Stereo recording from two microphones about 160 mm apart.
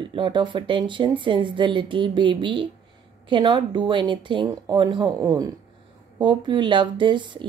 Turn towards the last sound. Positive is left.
turn(degrees=-30)  # may be behind; listen again after turning